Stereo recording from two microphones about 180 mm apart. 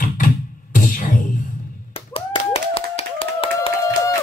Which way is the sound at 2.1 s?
30° left (ahead or behind).